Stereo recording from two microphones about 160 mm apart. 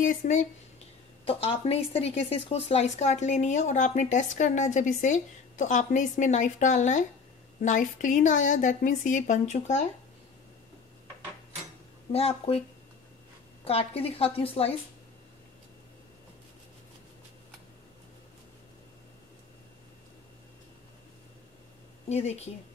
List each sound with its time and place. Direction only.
0.0 s speech: 55° left (ahead or behind)
1.2 s speech: 40° left (ahead or behind)
12.1 s a woman's voice: 40° left (ahead or behind)
13.7 s a woman's voice: 40° left (ahead or behind)
22.1 s speech: 45° left (ahead or behind)